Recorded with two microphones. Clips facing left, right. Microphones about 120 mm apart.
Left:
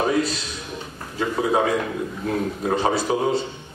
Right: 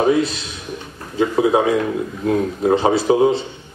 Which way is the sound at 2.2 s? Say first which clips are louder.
Right 7 dB; 25° right (ahead or behind).